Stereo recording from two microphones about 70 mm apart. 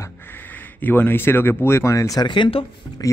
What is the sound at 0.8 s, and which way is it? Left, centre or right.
Speech, left.